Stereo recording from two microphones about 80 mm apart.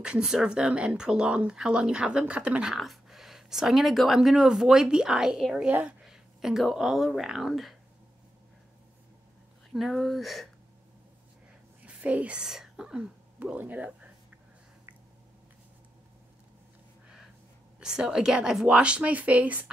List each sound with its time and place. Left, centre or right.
0.0 s speech: centre
5.7 s a woman's voice: right
6.0 s speech: centre
9.7 s speech: centre
11.8 s speech: centre
17.7 s speech: centre